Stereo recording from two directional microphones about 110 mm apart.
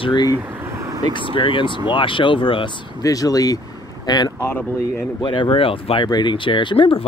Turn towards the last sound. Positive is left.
turn(degrees=50)  # may be behind; listen again after turning